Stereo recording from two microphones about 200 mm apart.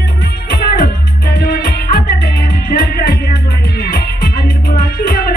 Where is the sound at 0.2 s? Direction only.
50° left (ahead or behind).